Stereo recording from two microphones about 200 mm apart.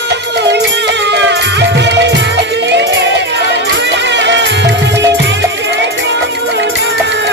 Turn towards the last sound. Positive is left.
turn(degrees=-60)  # may be behind; listen again after turning